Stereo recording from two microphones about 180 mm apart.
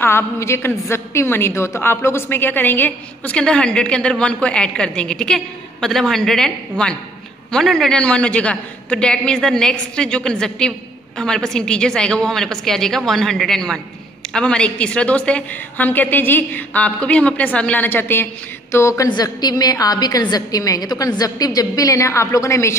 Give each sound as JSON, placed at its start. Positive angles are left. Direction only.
{"t": 0.0, "sound": "a woman's voice", "side_deg": 15}